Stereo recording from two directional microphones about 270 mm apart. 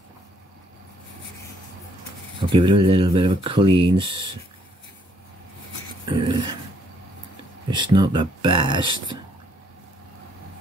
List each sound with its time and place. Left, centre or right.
2.5 s speech: centre
6.0 s dog: centre
7.7 s speech: centre